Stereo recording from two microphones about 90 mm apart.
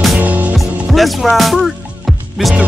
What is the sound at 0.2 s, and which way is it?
Music, 15° right (ahead or behind).